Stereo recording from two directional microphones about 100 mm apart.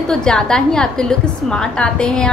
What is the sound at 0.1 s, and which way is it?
A woman's voice, 5° left (ahead or behind).